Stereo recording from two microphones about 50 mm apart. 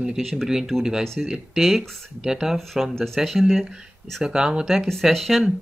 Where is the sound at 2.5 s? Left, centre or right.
Centre.